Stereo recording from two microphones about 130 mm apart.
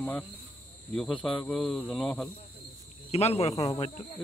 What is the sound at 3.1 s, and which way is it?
Speech, 55° left (ahead or behind).